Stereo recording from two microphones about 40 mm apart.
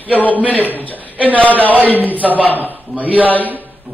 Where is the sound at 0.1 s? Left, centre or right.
Left.